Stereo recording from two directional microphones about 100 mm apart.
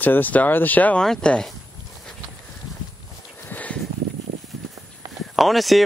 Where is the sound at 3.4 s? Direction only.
15° left (ahead or behind).